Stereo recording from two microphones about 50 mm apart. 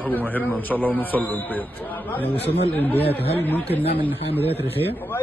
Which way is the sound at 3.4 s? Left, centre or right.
Left.